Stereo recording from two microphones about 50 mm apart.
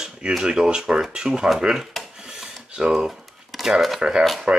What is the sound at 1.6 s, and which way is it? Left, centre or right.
Dishes, centre.